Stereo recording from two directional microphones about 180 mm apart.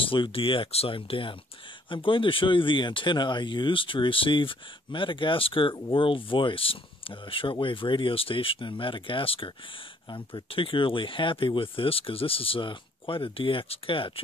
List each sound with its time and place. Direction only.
0.0 s speech: 30° left (ahead or behind)